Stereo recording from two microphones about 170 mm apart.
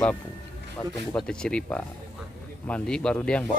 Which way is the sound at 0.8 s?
25° left (ahead or behind).